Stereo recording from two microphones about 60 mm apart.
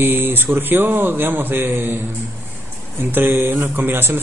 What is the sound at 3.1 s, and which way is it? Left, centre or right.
Speech, right.